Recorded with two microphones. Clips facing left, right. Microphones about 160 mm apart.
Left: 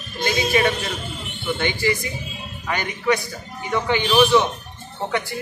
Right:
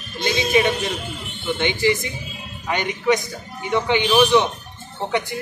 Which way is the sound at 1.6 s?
20° right (ahead or behind).